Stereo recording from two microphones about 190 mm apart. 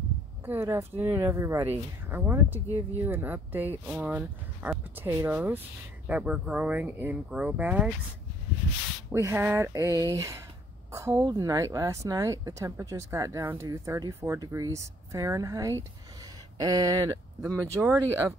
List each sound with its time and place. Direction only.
0.5 s speech: 15° right (ahead or behind)
9.1 s speech: 10° right (ahead or behind)